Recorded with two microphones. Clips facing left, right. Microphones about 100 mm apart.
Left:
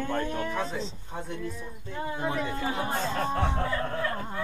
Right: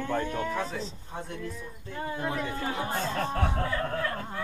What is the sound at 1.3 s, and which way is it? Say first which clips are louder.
Speech: left 2 dB; 20° left (ahead or behind).